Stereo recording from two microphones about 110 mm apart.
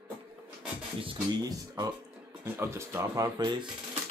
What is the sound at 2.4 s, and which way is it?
Speech, 25° right (ahead or behind).